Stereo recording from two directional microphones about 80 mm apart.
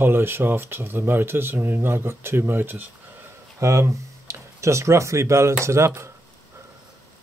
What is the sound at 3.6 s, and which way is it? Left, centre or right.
Speech, right.